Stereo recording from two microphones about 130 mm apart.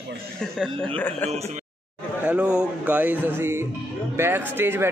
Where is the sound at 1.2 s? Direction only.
55° right (ahead or behind).